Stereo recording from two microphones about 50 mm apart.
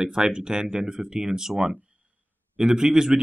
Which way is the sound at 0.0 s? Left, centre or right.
Centre.